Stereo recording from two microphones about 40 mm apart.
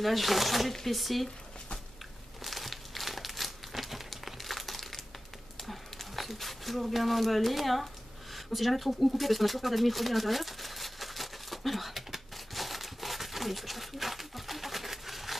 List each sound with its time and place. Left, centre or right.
0.0 s speech: centre
2.4 s crumpling: centre
5.6 s a sound: centre
8.5 s shuffling cards: centre